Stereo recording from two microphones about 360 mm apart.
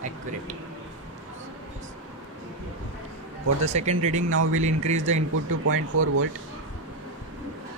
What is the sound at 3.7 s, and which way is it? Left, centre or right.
Speech, centre.